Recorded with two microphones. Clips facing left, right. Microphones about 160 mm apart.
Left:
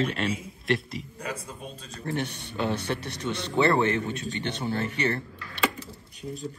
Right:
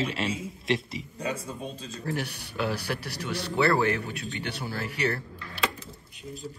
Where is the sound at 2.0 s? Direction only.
5° right (ahead or behind).